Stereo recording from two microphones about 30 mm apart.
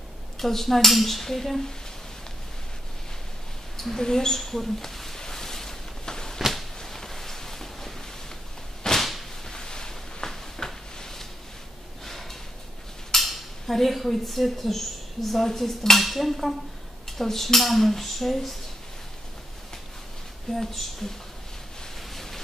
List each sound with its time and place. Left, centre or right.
0.4 s speech: centre
3.7 s mouse: centre
4.0 s speech: centre
4.7 s a sound: centre
8.8 s whip: centre
9.5 s a sound: left
12.0 s drawer open or close: centre
13.1 s speech: centre
16.0 s dishes: centre
17.2 s speech: centre
17.6 s dishes: centre
20.5 s dishes: centre
22.1 s a sound: centre